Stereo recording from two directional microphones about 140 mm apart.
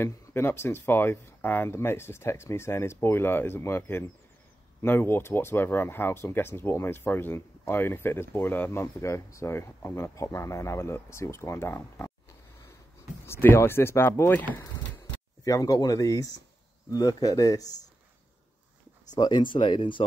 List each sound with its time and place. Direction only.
0.0 s speech: 15° left (ahead or behind)
13.2 s speech: 15° left (ahead or behind)
19.1 s speech: 30° left (ahead or behind)